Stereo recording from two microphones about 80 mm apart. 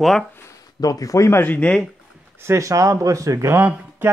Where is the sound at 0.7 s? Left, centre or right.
Left.